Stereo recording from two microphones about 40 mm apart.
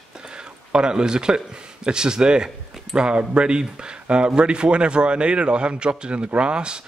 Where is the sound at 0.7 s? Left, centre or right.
Centre.